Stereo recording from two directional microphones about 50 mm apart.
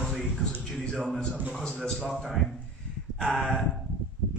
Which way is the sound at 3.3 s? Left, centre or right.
Centre.